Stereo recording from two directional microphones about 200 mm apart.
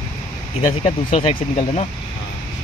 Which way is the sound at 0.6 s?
25° left (ahead or behind).